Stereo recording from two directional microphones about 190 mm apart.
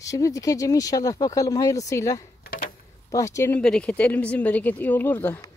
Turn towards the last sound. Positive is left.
turn(degrees=10)  # may be behind; listen again after turning